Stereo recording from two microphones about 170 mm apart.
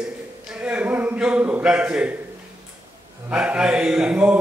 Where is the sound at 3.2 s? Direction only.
5° right (ahead or behind).